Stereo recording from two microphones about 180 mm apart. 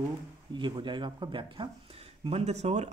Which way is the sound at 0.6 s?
25° right (ahead or behind).